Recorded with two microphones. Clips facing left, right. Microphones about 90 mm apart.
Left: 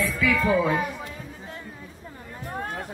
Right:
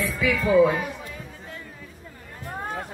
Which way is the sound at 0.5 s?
25° left (ahead or behind).